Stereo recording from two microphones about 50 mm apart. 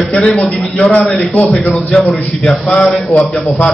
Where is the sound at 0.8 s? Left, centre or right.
Left.